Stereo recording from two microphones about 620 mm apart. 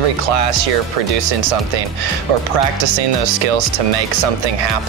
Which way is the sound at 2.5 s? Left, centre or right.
Right.